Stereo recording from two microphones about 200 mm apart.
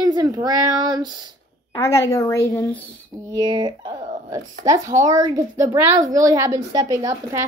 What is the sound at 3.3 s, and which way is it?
Speech, 20° right (ahead or behind).